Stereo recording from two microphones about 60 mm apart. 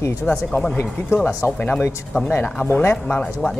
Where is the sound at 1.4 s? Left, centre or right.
Left.